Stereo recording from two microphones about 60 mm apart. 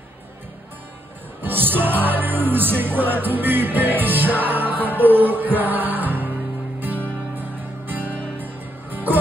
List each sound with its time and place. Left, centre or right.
1.4 s music: right